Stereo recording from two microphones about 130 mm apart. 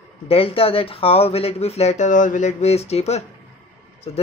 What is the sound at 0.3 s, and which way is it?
Speech, 45° left (ahead or behind).